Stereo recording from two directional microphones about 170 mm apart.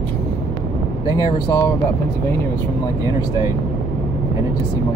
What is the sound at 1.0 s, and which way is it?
Speech, 20° left (ahead or behind).